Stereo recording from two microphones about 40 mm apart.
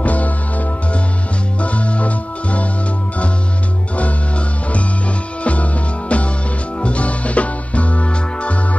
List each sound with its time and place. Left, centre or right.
0.0 s music: left
5.4 s music: left